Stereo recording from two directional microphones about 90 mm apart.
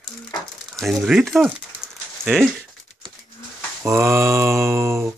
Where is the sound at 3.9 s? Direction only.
30° right (ahead or behind).